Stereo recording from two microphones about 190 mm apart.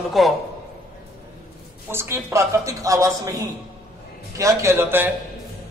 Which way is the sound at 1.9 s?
15° right (ahead or behind).